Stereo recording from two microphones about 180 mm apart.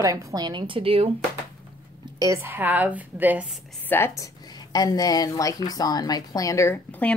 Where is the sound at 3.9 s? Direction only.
15° left (ahead or behind).